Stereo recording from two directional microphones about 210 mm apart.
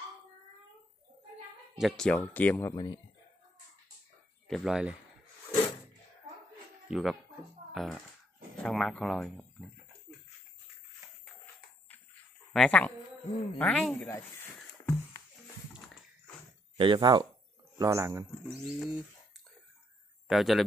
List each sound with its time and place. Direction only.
1.8 s speech: centre (ahead or behind)
2.7 s speech: 20° left (ahead or behind)
4.5 s speech: centre (ahead or behind)
6.9 s a child's voice: centre (ahead or behind)
12.5 s speech: 5° left (ahead or behind)
14.0 s snake: 10° left (ahead or behind)
16.7 s a man's voice: 25° right (ahead or behind)
18.5 s speech: centre (ahead or behind)
20.2 s a man's voice: centre (ahead or behind)